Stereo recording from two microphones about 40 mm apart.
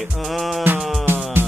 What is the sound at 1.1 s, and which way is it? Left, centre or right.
Music, right.